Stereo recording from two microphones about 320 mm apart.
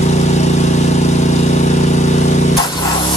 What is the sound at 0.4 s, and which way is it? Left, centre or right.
Vehicle, left.